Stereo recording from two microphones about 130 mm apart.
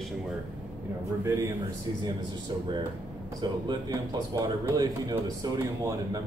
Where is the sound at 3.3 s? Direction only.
35° right (ahead or behind).